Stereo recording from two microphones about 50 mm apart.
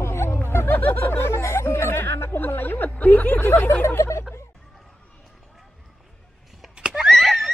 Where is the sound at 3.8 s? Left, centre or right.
Left.